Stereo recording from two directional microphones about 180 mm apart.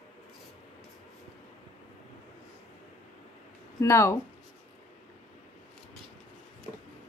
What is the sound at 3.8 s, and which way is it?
Speech, 15° left (ahead or behind).